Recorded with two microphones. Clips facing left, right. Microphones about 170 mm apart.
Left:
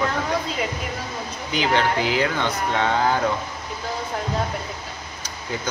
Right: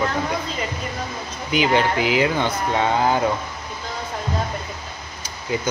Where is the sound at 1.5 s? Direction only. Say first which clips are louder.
Right 2 dB; 10° right (ahead or behind).